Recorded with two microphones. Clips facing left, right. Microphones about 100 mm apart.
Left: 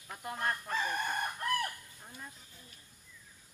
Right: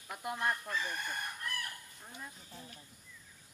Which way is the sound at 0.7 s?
50° left (ahead or behind).